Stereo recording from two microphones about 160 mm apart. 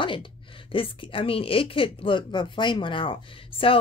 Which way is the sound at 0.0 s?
30° left (ahead or behind).